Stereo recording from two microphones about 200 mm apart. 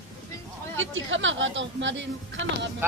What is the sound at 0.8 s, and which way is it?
Speech, 70° right (ahead or behind).